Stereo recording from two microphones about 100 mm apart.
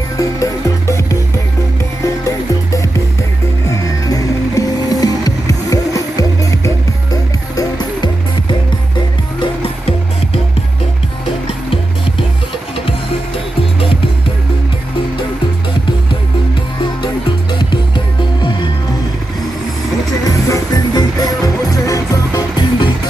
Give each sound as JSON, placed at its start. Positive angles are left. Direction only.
{"t": 0.2, "sound": "music", "side_deg": 30}
{"t": 2.2, "sound": "music", "side_deg": 30}
{"t": 9.4, "sound": "music", "side_deg": 70}
{"t": 17.0, "sound": "music", "side_deg": 50}
{"t": 20.2, "sound": "music", "side_deg": 35}